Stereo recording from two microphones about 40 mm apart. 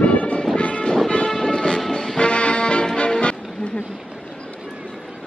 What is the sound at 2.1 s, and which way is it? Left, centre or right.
Music, left.